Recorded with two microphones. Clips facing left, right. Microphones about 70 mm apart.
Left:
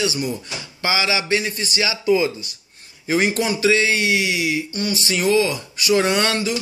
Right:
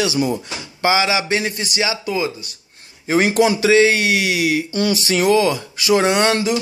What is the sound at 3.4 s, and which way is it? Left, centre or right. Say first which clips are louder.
Speech: right 7 dB; right.